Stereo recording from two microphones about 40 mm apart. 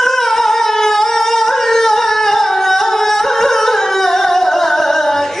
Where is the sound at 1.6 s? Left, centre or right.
Centre.